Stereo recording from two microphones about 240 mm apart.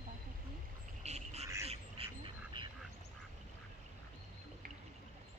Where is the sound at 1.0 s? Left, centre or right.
Right.